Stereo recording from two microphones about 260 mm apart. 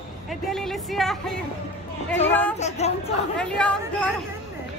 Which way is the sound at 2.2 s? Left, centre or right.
Centre.